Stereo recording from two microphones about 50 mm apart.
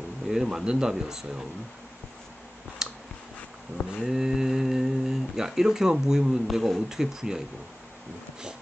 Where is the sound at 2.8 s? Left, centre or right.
Centre.